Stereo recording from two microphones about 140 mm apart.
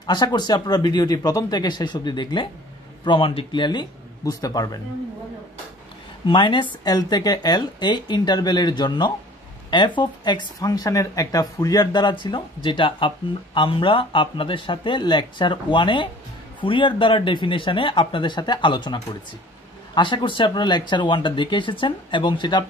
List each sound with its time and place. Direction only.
0.0 s speech: 30° left (ahead or behind)
6.2 s speech: 35° left (ahead or behind)